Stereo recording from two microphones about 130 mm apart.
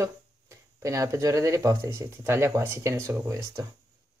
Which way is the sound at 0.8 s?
25° right (ahead or behind).